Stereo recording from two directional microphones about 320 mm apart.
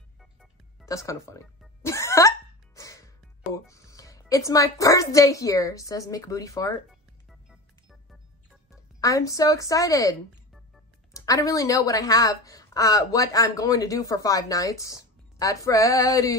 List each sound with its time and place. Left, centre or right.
0.2 s music: centre
3.6 s a woman's voice: centre
6.9 s music: centre
9.0 s a woman's voice: centre
11.1 s a woman's voice: centre